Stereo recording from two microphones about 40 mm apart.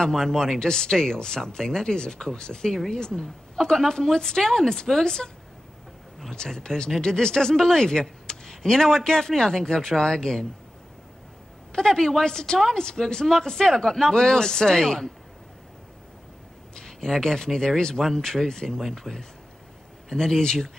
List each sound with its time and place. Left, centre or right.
0.1 s speech: centre
6.3 s speech: centre
11.7 s speech: centre
16.7 s speech: centre
18.7 s speech: centre